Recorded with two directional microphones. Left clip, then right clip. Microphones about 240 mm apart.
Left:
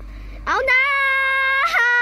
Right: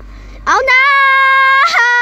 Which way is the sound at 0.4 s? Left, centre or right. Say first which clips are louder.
Right 8 dB; centre.